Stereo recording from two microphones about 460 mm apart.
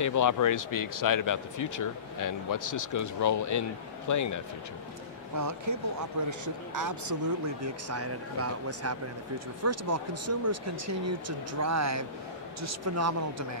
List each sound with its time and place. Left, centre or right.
0.0 s speech: left
5.4 s speech: right